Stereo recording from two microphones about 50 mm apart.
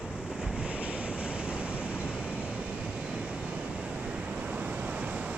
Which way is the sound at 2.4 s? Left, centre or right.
Right.